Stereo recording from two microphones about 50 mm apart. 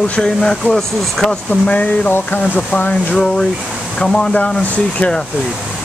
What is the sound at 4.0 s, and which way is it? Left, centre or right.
Speech, centre.